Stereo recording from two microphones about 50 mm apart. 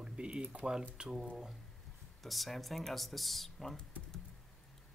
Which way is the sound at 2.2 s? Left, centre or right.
Centre.